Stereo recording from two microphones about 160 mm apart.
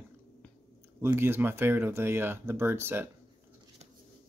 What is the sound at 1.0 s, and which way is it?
Speech, 15° right (ahead or behind).